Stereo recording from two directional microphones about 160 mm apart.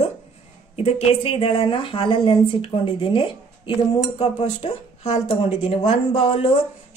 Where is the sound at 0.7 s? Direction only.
40° left (ahead or behind).